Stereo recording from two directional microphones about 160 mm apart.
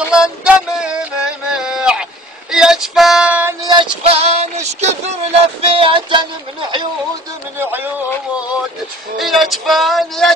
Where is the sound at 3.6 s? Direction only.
30° right (ahead or behind).